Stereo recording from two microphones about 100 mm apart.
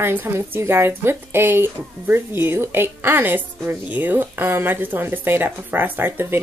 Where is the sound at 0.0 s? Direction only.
25° right (ahead or behind).